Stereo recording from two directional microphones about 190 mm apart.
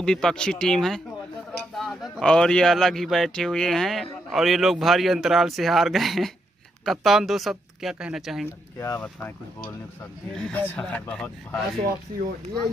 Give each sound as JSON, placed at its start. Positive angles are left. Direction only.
{"t": 0.0, "sound": "speech", "side_deg": 5}
{"t": 8.7, "sound": "speech", "side_deg": 15}